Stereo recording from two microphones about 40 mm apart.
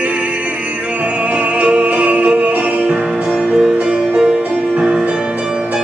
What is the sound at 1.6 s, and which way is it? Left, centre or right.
Music, right.